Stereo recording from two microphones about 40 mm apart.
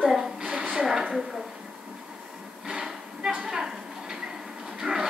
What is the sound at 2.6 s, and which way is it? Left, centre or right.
Train, centre.